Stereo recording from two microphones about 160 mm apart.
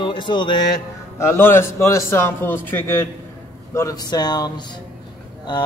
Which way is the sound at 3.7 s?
20° left (ahead or behind).